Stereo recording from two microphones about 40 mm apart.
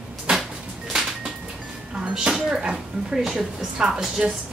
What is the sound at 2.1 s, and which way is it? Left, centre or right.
A woman's voice, centre.